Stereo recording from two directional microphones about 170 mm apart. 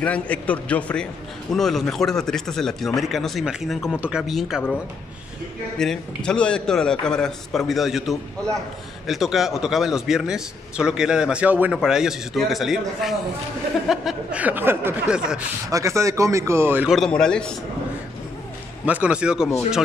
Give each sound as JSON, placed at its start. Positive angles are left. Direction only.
{"t": 0.0, "sound": "a man's voice", "side_deg": 5}
{"t": 5.8, "sound": "a man's voice", "side_deg": 5}
{"t": 15.7, "sound": "speech", "side_deg": -15}
{"t": 16.9, "sound": "a man's voice", "side_deg": 5}
{"t": 18.9, "sound": "a man's voice", "side_deg": -10}